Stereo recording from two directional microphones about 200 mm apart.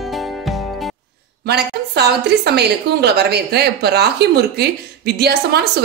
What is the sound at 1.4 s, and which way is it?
A woman's voice, 55° right (ahead or behind).